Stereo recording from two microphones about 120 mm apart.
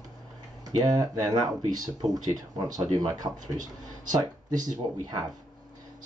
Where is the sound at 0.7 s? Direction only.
35° right (ahead or behind).